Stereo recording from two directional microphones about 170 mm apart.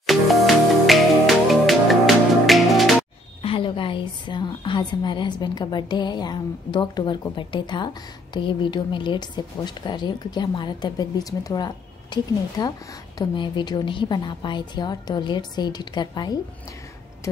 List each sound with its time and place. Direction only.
0.0 s music: centre (ahead or behind)
3.4 s a woman's voice: 30° left (ahead or behind)